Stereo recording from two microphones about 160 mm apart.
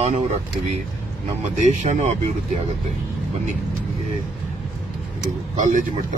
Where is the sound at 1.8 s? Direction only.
50° right (ahead or behind).